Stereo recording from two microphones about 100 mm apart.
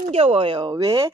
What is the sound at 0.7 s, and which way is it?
Speech, 35° right (ahead or behind).